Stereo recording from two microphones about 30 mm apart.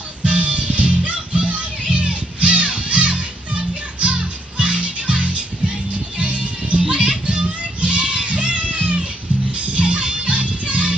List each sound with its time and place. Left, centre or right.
0.2 s music: right
9.7 s music: right